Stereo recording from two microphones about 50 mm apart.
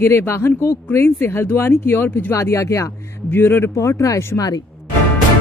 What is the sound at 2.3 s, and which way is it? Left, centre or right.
Speech, left.